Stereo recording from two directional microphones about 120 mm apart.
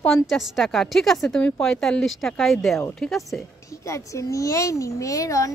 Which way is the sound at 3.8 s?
25° left (ahead or behind).